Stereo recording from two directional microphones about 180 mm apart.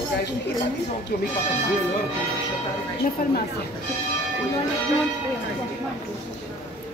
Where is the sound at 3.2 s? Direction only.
50° left (ahead or behind).